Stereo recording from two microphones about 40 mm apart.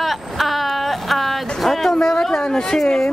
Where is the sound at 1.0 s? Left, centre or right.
Centre.